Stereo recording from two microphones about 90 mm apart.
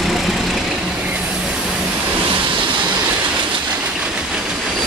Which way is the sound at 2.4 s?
65° right (ahead or behind).